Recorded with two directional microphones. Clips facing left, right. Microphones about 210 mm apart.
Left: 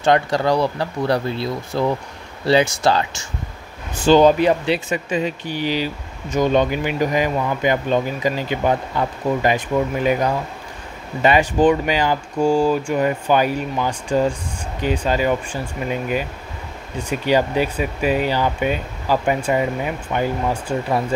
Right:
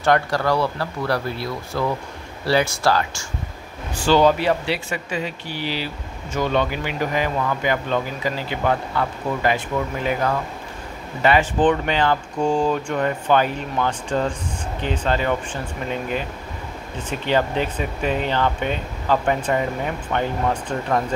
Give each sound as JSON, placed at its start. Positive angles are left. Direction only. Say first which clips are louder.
{"t": 0.0, "sound": "speech", "louder": "left 2 dB", "side_deg": 20}